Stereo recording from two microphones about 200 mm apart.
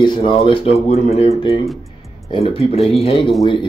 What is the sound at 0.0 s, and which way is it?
Speech, 25° left (ahead or behind).